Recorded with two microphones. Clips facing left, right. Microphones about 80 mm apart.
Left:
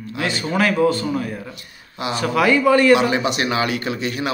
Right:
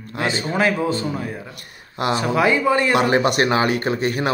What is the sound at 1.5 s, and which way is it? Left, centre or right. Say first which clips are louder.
Speech: left 1 dB; right.